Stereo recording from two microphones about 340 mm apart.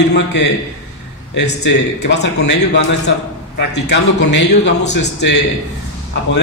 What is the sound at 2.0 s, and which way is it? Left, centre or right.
Speech, left.